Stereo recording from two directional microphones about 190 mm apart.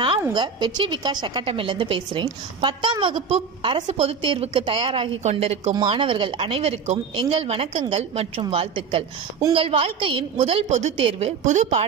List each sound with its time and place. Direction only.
0.3 s a woman's voice: 25° right (ahead or behind)